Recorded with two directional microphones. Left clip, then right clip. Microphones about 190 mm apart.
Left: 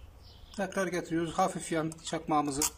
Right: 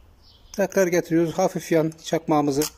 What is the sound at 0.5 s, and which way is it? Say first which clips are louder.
Speech: right 12 dB; 30° right (ahead or behind).